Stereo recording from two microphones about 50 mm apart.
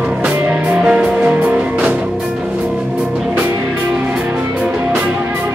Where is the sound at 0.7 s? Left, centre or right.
Centre.